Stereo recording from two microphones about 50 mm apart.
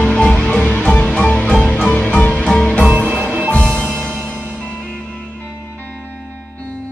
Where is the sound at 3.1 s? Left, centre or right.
Right.